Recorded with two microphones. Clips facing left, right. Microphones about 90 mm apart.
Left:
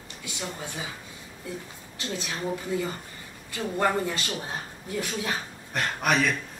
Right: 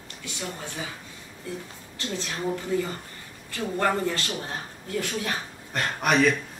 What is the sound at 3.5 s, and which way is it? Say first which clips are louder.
Speech: even; 15° left (ahead or behind).